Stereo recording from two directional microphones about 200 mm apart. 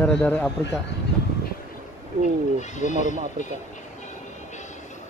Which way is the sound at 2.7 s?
35° left (ahead or behind).